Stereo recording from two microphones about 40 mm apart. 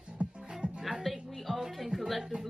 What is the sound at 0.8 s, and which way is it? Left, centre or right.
Music, centre.